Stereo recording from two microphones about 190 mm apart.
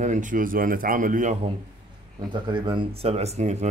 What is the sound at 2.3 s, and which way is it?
Speech, 25° right (ahead or behind).